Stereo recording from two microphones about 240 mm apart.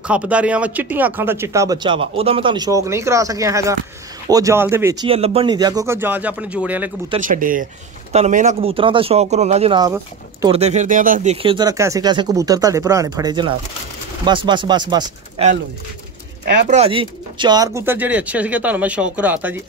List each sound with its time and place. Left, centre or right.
0.0 s speech: centre
5.0 s speech: right; by 6.9 s centre
7.2 s speech: right
11.4 s speech: centre
16.6 s speech: right; by 19.6 s centre